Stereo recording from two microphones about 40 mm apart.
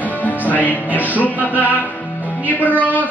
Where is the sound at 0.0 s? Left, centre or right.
Left.